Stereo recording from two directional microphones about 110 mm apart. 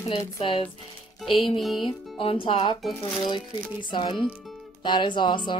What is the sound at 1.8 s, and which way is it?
Speech, 55° left (ahead or behind).